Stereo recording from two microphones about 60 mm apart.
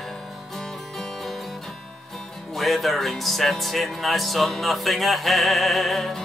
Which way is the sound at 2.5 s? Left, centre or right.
Centre.